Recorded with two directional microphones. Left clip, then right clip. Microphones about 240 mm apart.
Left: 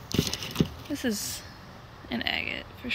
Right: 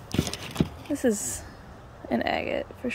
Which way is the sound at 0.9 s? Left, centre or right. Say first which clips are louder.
Right 8 dB; centre.